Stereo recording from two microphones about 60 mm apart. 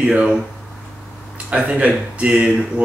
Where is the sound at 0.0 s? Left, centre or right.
Right.